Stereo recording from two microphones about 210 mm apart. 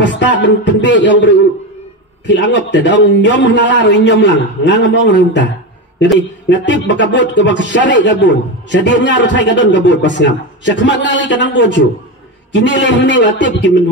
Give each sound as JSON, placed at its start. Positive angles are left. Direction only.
{"t": 0.0, "sound": "speech", "side_deg": 60}